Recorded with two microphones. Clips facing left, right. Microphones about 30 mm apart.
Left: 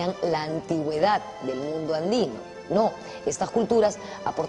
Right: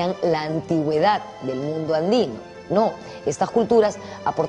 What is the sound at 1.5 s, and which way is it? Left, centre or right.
Speech, centre.